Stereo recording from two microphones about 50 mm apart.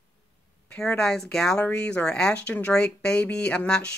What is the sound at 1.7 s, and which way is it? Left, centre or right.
Speech, left.